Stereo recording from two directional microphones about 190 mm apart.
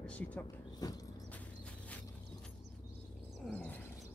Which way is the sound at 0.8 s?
20° left (ahead or behind).